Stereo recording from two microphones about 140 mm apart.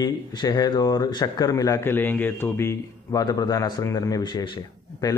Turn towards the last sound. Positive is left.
turn(degrees=30)  # may be behind; listen again after turning